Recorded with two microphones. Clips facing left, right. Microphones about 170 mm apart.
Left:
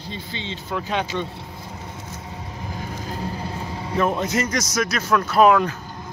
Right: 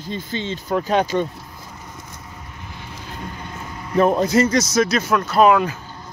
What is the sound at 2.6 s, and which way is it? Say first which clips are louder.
Vehicle: left 6 dB; 40° left (ahead or behind).